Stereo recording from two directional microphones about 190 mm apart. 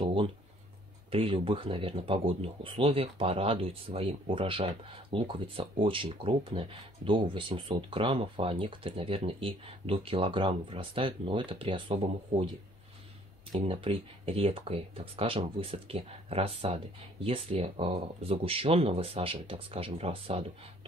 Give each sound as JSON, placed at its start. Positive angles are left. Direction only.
{"t": 0.0, "sound": "a sound", "side_deg": -25}
{"t": 1.1, "sound": "speech", "side_deg": -30}
{"t": 13.5, "sound": "speech", "side_deg": -30}